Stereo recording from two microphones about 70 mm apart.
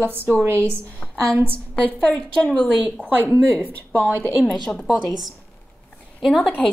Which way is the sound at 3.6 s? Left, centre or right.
Right.